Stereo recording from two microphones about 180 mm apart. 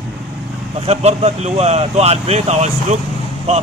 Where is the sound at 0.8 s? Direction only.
35° right (ahead or behind).